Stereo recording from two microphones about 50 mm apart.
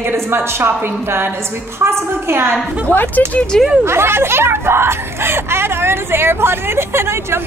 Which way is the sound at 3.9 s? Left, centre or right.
Right.